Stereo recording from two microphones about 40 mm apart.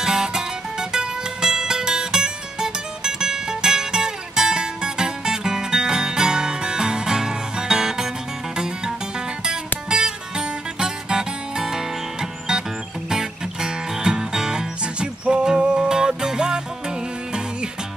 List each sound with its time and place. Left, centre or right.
0.0 s music: centre